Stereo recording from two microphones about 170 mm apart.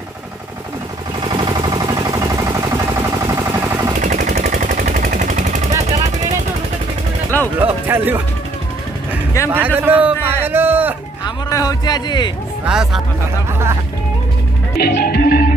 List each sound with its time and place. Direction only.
1.3 s a sound: 25° right (ahead or behind)
4.0 s machine gun: 45° right (ahead or behind)
5.7 s a sound: 20° right (ahead or behind)
7.5 s speech: 10° right (ahead or behind)
9.5 s a man's voice: 10° right (ahead or behind)
11.2 s speech: 20° left (ahead or behind)
12.6 s speech: 5° right (ahead or behind)
14.8 s music: 65° left (ahead or behind)